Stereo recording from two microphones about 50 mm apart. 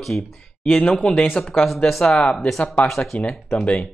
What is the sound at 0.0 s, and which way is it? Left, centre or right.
Speech, centre.